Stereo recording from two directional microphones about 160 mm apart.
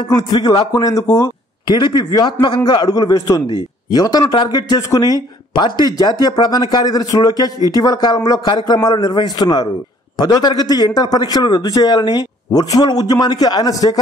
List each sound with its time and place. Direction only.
0.1 s speech: 25° left (ahead or behind)